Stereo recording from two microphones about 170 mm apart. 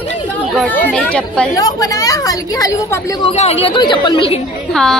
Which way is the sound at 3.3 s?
40° left (ahead or behind).